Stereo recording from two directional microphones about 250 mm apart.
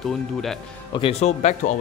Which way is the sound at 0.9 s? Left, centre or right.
Left.